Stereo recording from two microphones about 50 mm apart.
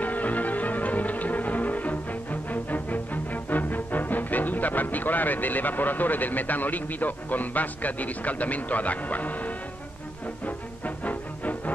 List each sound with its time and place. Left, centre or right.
0.0 s music: left
11.1 s music: left